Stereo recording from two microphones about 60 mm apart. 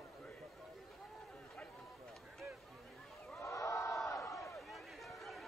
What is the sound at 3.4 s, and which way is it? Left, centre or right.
Crowd, left.